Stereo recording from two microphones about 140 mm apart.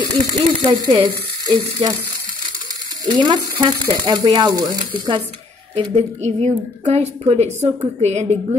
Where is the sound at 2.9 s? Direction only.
30° right (ahead or behind).